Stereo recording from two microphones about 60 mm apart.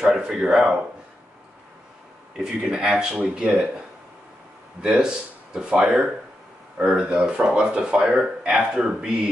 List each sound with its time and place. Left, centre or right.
0.0 s speech: centre
2.3 s speech: centre
4.8 s speech: centre